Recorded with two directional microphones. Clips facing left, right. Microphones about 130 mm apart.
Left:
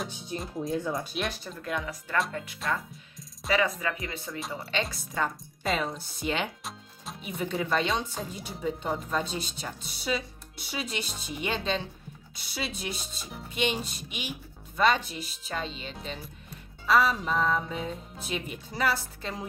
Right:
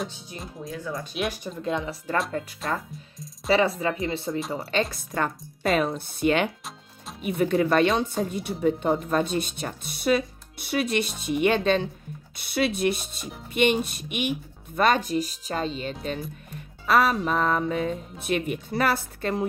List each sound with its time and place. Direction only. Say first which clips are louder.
0.7 s speech: left 2 dB; 20° left (ahead or behind)
1.1 s speech: right 4 dB; 5° right (ahead or behind)
1.6 s speech: right 5 dB; 25° right (ahead or behind)
3.4 s speech: right 5 dB; 30° right (ahead or behind)
4.5 s speech: right 4 dB; 40° right (ahead or behind)
4.9 s speech: right 3 dB; 55° right (ahead or behind)
14.8 s speech: right 4 dB; 50° right (ahead or behind)
16.8 s speech: right 3 dB; 60° right (ahead or behind)